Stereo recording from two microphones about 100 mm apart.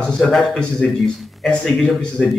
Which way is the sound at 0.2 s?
Centre (ahead or behind).